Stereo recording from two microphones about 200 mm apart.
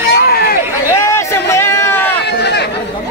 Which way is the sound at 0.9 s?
15° left (ahead or behind).